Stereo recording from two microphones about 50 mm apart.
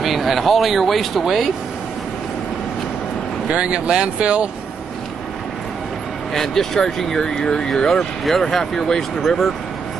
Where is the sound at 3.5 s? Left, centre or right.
Right.